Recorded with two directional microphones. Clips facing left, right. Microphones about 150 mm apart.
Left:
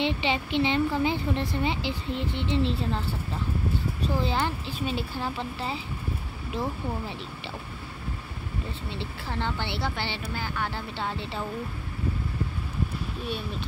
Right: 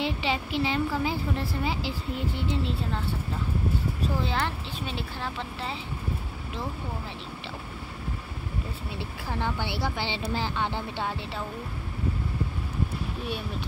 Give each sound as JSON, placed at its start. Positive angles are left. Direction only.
{"t": 0.0, "sound": "a woman's voice", "side_deg": -5}
{"t": 4.1, "sound": "a woman's voice", "side_deg": 0}
{"t": 8.9, "sound": "speech", "side_deg": -10}
{"t": 10.2, "sound": "speech", "side_deg": -30}
{"t": 11.1, "sound": "a woman's voice", "side_deg": -5}